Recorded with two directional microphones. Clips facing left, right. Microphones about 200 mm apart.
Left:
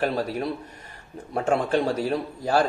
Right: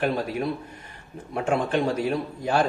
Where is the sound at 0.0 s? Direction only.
40° left (ahead or behind).